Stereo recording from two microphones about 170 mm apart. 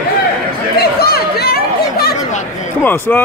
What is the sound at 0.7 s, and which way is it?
Chatter, 65° left (ahead or behind).